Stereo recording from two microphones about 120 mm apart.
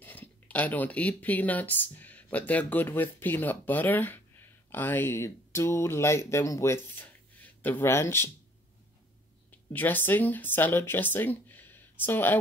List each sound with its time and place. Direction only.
0.0 s speech: 15° left (ahead or behind)
9.5 s speech: 15° left (ahead or behind)